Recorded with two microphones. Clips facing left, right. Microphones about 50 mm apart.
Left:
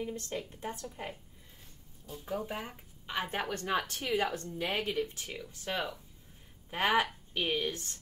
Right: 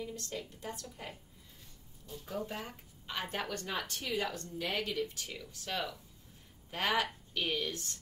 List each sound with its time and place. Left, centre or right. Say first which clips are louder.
0.0 s speech: left 4 dB; left